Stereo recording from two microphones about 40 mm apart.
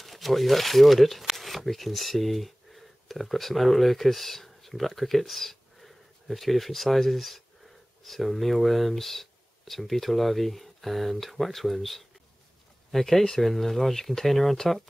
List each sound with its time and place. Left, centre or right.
0.0 s speech: centre